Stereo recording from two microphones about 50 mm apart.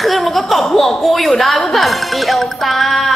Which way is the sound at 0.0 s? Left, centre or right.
Centre.